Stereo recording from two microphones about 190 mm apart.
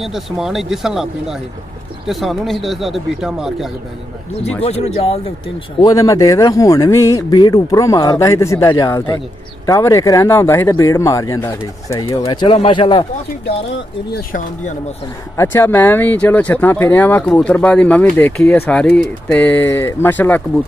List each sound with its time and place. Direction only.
0.0 s speech: centre (ahead or behind)
4.6 s speech: 35° left (ahead or behind)
5.8 s speech: 20° left (ahead or behind)
14.3 s speech: 40° left (ahead or behind)
15.3 s speech: 10° left (ahead or behind)